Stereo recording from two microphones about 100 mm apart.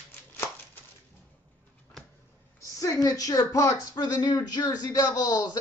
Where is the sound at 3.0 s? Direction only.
35° left (ahead or behind).